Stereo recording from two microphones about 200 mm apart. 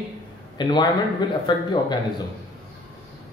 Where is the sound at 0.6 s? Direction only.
20° left (ahead or behind).